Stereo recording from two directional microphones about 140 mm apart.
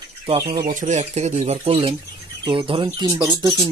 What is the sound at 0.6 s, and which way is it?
Speech, 65° right (ahead or behind).